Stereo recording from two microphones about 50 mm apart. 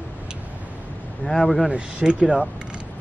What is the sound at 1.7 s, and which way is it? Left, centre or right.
Speech, centre.